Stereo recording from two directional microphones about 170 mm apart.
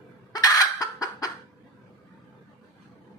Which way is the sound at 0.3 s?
20° left (ahead or behind).